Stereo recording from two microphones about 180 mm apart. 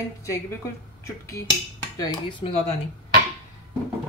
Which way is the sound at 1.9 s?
25° left (ahead or behind).